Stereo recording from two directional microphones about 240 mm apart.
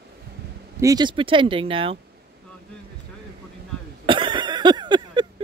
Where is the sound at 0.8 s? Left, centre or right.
Centre.